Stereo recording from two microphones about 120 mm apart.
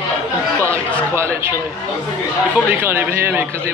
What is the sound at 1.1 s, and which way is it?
A man's voice, 20° right (ahead or behind).